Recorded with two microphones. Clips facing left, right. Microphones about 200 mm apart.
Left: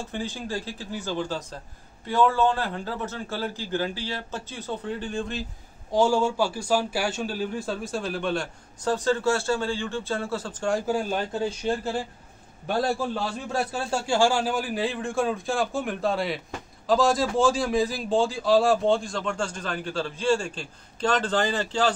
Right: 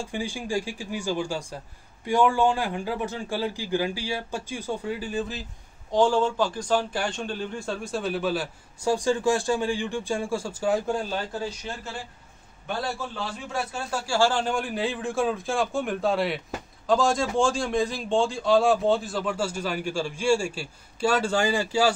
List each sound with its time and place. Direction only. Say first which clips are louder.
0.0 s a man's voice: right 1 dB; 10° right (ahead or behind)
5.9 s a man's voice: even; 10° left (ahead or behind)
11.4 s a man's voice: left 7 dB; 30° left (ahead or behind); by 21.9 s 10° right (ahead or behind)